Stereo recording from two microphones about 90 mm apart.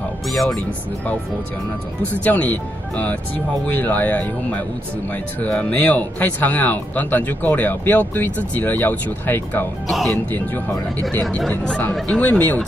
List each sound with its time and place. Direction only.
0.3 s speech: centre (ahead or behind)
2.1 s speech: 15° left (ahead or behind)
9.8 s speech: 5° left (ahead or behind)
10.3 s speech: 20° left (ahead or behind)